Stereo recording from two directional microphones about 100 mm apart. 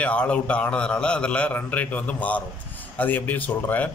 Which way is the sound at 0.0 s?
10° left (ahead or behind).